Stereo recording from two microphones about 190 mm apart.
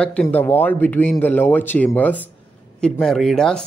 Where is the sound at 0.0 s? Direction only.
5° left (ahead or behind).